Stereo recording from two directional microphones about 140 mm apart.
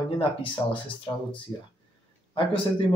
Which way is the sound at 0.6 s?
25° left (ahead or behind).